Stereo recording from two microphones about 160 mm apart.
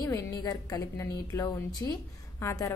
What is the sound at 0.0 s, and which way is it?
A woman's voice, 20° left (ahead or behind).